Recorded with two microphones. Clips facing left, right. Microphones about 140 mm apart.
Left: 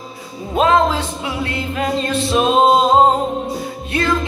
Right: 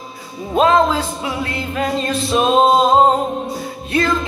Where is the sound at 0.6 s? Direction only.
35° right (ahead or behind).